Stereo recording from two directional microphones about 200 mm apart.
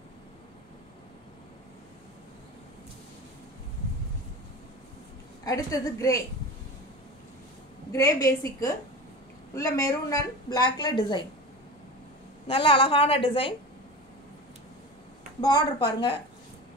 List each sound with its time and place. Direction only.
5.4 s speech: 15° left (ahead or behind)
7.9 s speech: 15° left (ahead or behind)
12.4 s a woman's voice: 25° left (ahead or behind)
15.4 s a woman's voice: 20° left (ahead or behind)